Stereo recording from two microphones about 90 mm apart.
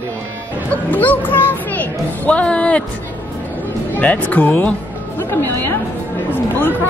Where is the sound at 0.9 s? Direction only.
20° left (ahead or behind).